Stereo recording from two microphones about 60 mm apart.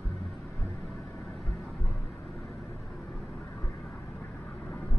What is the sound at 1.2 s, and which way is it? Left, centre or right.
Music, centre.